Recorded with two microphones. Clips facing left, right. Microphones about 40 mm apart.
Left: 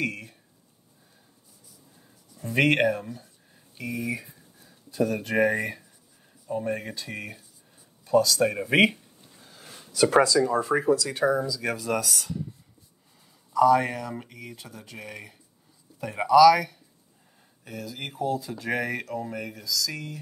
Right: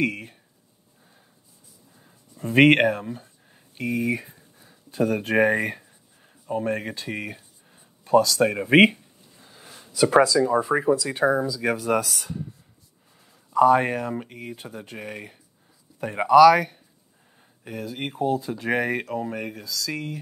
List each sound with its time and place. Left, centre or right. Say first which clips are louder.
0.0 s speech: right 5 dB; right
2.3 s speech: right 6 dB; right
6.4 s a sound: right 3 dB; right
9.7 s speech: right 1 dB; centre; by 12.3 s right
13.5 s speech: right 2 dB; right